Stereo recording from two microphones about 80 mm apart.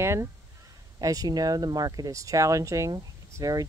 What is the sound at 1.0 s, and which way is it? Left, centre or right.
Speech, right.